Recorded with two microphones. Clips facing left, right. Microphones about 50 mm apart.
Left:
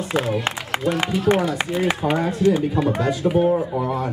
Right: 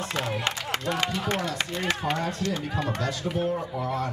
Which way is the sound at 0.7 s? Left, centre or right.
Centre.